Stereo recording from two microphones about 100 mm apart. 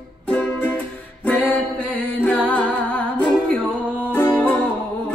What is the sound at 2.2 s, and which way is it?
Music, 10° left (ahead or behind).